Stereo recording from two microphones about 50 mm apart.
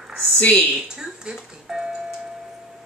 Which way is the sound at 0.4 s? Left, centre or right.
Left.